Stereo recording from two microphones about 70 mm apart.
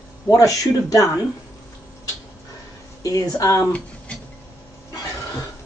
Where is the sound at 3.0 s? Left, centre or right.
Left.